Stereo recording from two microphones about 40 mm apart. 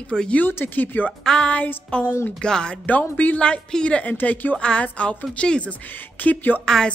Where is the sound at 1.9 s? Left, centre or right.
Left.